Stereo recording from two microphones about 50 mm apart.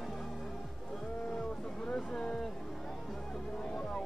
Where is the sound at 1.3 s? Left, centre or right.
Centre.